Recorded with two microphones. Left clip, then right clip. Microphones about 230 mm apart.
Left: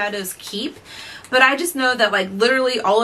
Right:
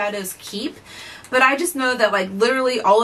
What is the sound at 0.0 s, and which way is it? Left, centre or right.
Speech, centre.